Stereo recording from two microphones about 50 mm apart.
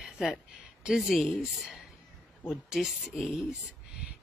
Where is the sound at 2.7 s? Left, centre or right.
Centre.